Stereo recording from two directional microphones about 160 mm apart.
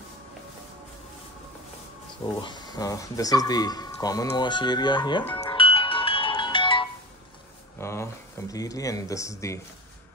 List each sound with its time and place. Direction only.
2.2 s speech: 25° left (ahead or behind)
5.2 s music: 10° left (ahead or behind)
5.5 s ringtone: 35° left (ahead or behind)
7.8 s speech: 15° left (ahead or behind)